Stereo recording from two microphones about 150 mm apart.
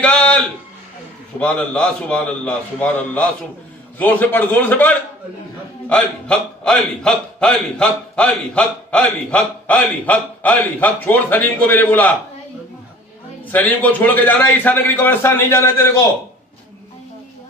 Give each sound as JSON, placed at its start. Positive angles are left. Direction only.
{"t": 0.0, "sound": "a sound", "side_deg": 5}
{"t": 1.4, "sound": "a man's voice", "side_deg": 10}
{"t": 13.5, "sound": "a man's voice", "side_deg": 10}